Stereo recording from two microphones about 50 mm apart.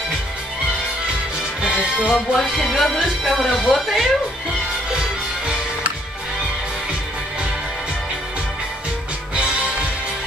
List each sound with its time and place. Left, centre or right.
1.6 s music: centre
2.3 s music: centre
3.7 s speech: centre